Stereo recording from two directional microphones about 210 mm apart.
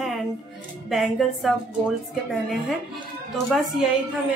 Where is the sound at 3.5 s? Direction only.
Centre (ahead or behind).